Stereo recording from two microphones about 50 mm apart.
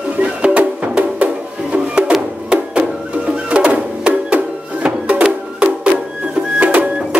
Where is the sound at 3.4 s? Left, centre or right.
Right.